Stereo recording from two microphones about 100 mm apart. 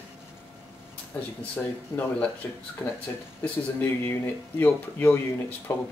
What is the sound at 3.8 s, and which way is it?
Speech, 25° left (ahead or behind).